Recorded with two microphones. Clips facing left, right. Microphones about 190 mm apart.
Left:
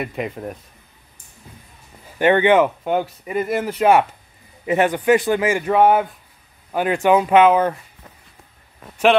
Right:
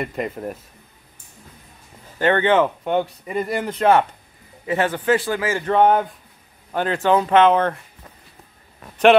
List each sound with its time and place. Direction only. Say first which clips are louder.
0.0 s speech: even; 5° left (ahead or behind)
2.1 s a man's voice: left 3 dB; 15° left (ahead or behind)